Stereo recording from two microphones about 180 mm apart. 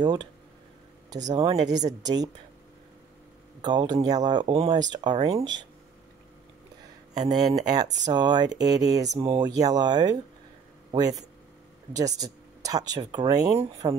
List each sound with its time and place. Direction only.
0.0 s speech: 25° right (ahead or behind)
3.6 s speech: 25° right (ahead or behind)
7.4 s speech: 20° right (ahead or behind)